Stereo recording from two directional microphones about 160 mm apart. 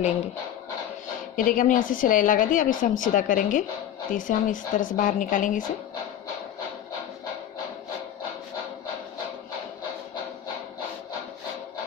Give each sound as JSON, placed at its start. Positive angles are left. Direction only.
{"t": 1.3, "sound": "a woman's voice", "side_deg": 55}